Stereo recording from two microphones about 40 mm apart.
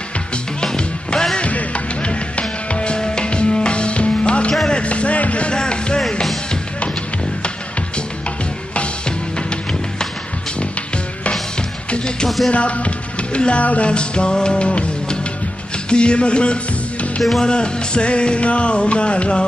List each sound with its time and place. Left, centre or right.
0.7 s music: left
1.5 s music: left
4.6 s a sound: left
5.5 s music: left
11.9 s music: left
17.2 s music: centre
17.5 s music: left